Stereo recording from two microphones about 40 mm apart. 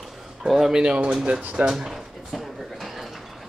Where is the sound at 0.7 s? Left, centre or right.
Right.